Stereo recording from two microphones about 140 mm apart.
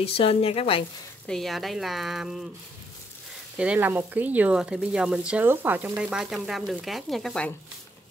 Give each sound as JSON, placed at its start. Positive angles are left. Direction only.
{"t": 0.0, "sound": "speech", "side_deg": 45}
{"t": 1.2, "sound": "speech", "side_deg": 5}
{"t": 3.5, "sound": "speech", "side_deg": -10}